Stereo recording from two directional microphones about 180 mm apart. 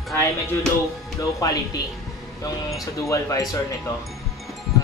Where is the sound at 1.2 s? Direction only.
20° left (ahead or behind).